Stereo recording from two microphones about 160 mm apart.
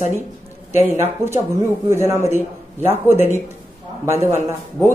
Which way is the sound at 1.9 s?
15° right (ahead or behind).